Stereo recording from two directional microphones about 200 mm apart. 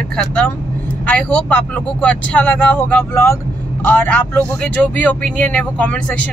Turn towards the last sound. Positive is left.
turn(degrees=5)  # may be behind; listen again after turning